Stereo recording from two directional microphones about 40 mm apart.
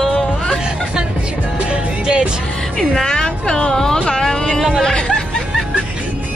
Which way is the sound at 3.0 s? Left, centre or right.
Centre.